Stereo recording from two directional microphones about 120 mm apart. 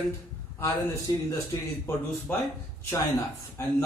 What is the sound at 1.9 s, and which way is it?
Speech, 15° left (ahead or behind).